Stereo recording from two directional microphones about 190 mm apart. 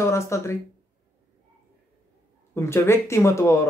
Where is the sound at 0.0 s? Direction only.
15° left (ahead or behind).